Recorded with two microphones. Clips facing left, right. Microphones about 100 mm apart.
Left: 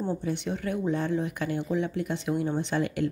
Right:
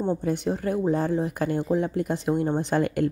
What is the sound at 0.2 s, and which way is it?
A woman's voice, 40° right (ahead or behind).